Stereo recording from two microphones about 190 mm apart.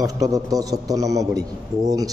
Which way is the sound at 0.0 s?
20° right (ahead or behind).